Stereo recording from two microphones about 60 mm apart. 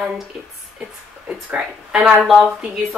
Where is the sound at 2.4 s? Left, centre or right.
Centre.